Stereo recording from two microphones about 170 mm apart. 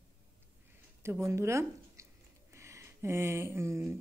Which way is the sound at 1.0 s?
15° right (ahead or behind).